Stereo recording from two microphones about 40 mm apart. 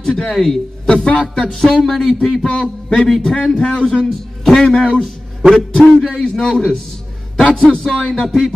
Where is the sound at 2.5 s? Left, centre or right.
Left.